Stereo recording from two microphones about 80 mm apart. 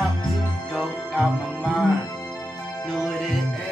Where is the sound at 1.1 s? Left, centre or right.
Centre.